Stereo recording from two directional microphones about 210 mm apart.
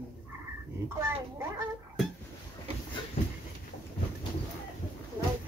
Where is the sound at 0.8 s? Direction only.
10° right (ahead or behind).